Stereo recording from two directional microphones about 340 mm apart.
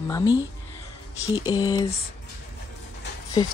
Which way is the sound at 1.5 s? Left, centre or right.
Centre.